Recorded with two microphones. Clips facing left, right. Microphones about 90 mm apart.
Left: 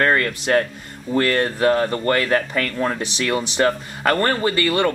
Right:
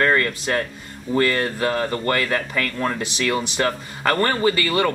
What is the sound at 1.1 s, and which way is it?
Speech, 5° right (ahead or behind).